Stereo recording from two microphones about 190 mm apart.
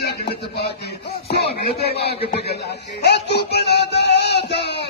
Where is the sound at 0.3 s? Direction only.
60° left (ahead or behind).